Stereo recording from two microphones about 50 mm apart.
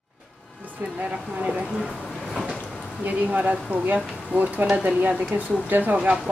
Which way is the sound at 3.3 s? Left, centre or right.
Right.